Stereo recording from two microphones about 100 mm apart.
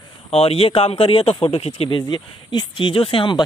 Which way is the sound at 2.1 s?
50° left (ahead or behind).